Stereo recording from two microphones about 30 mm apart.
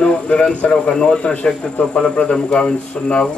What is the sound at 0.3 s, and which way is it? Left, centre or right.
Speech, left.